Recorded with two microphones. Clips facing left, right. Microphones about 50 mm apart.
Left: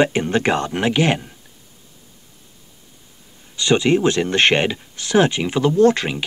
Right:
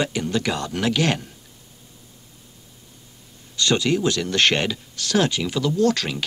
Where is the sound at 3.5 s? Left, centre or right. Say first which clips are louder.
Left 4 dB; left.